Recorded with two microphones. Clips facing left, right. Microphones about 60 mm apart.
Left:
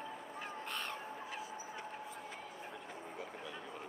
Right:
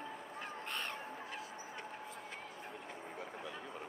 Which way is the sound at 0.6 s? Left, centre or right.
Right.